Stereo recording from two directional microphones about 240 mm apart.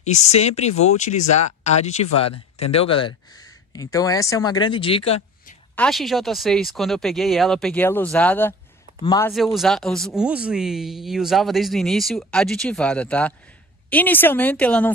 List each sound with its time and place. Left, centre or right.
0.0 s speech: left
5.8 s speech: centre
9.3 s speech: centre